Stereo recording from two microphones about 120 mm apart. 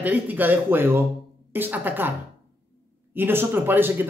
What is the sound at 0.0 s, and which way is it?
Speech, 15° right (ahead or behind).